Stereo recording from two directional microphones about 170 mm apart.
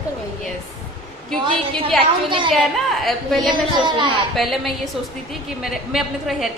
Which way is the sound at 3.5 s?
25° right (ahead or behind).